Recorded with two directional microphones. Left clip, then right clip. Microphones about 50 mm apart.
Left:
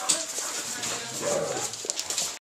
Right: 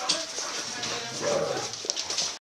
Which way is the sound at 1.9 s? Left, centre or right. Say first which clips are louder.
Right 3 dB; left.